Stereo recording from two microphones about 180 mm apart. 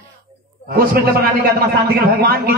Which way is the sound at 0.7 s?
55° right (ahead or behind).